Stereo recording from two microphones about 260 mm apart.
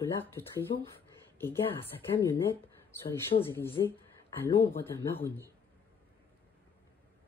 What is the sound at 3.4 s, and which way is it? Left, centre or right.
Speech, centre.